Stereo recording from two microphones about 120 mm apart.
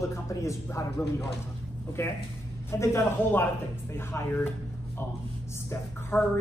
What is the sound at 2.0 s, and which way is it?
Speech, 20° left (ahead or behind).